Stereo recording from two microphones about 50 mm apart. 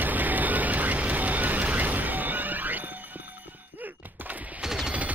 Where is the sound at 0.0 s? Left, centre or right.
Right.